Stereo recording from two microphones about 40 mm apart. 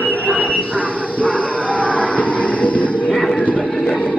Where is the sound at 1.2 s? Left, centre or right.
Left.